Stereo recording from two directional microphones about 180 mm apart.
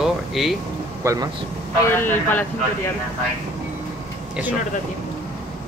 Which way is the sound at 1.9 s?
10° left (ahead or behind).